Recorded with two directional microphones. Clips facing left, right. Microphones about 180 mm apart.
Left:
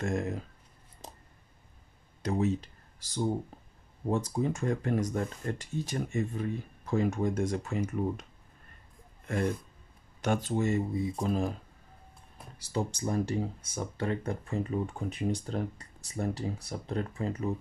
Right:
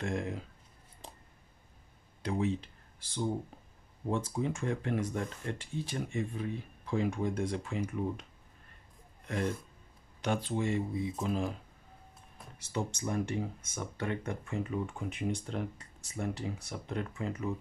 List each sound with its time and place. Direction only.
0.0 s speech: 45° left (ahead or behind)
1.0 s a sound: 40° left (ahead or behind)
2.2 s speech: 40° left (ahead or behind)
10.2 s speech: 45° left (ahead or behind)
12.5 s speech: 35° left (ahead or behind)